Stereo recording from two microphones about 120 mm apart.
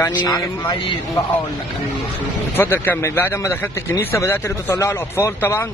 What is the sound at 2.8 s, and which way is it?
Speech, 20° left (ahead or behind).